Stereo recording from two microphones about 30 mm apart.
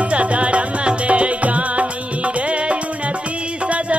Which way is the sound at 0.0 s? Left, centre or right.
Right.